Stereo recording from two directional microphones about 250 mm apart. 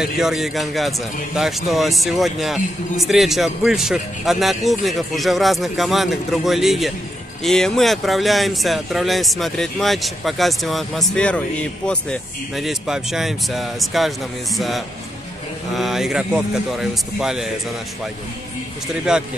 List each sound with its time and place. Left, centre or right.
0.0 s speech: centre
19.1 s speech: centre